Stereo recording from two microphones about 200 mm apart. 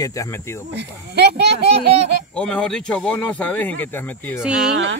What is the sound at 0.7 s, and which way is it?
Speech, 55° right (ahead or behind).